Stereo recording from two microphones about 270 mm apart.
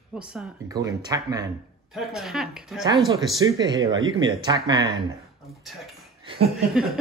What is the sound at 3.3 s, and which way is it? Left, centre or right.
Speech, centre.